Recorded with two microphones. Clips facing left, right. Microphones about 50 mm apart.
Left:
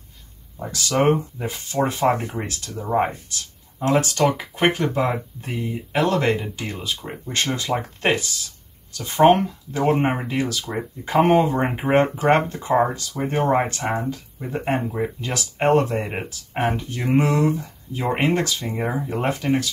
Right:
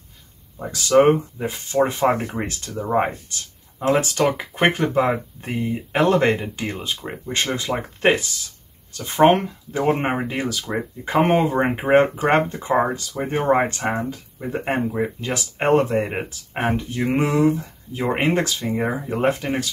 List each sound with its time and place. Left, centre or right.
0.6 s speech: centre
11.2 s speech: right; by 19.3 s centre
19.3 s speech: centre